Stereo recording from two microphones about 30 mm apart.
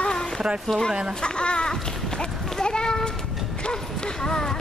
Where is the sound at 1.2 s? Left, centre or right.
Left.